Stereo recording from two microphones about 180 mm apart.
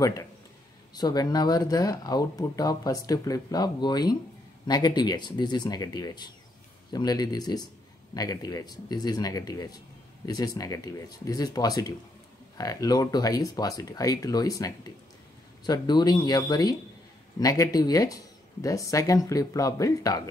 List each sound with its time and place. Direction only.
0.0 s speech: 20° left (ahead or behind)